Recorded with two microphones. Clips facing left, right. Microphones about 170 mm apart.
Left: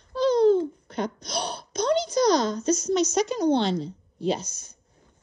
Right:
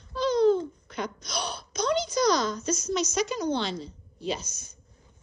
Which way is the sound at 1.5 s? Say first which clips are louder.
Left 3 dB; 60° left (ahead or behind).